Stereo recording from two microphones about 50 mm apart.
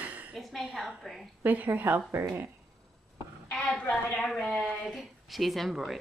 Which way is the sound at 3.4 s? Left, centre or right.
Centre.